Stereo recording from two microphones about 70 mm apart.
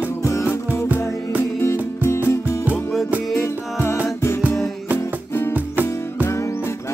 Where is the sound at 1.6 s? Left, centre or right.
Left.